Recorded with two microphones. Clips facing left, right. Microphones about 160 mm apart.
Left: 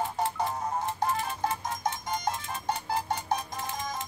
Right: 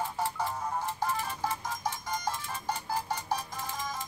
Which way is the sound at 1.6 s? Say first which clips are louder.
Left 3 dB; 20° left (ahead or behind).